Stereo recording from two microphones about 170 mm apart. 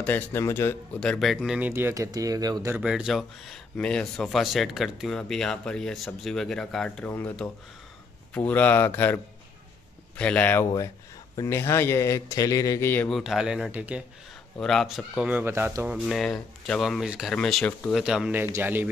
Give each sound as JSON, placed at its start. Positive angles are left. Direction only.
{"t": 0.0, "sound": "a man's voice", "side_deg": 10}
{"t": 1.7, "sound": "speech", "side_deg": -15}
{"t": 2.8, "sound": "a man's voice", "side_deg": -5}
{"t": 13.2, "sound": "speech", "side_deg": 0}
{"t": 14.6, "sound": "speech", "side_deg": 0}
{"t": 16.1, "sound": "speech", "side_deg": 0}